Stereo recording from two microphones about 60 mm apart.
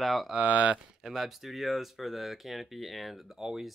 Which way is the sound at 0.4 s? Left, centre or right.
Right.